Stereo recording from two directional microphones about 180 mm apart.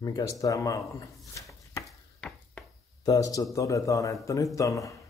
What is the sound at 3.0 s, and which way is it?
A man's voice, 20° left (ahead or behind).